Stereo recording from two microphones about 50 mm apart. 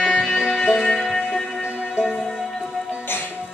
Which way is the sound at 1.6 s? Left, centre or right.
Right.